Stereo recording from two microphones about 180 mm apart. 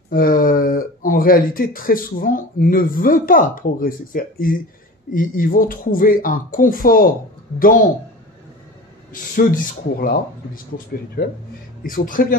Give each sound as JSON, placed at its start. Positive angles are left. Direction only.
{"t": 0.1, "sound": "speech", "side_deg": 50}
{"t": 9.1, "sound": "speech", "side_deg": 50}